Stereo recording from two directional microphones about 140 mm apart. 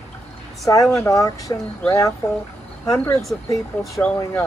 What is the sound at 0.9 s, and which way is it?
Speech, 20° left (ahead or behind).